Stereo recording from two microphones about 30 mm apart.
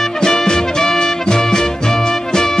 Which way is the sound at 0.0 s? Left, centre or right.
Centre.